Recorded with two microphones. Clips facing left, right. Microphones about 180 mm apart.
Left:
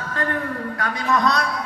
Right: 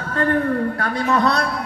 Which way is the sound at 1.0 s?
30° right (ahead or behind).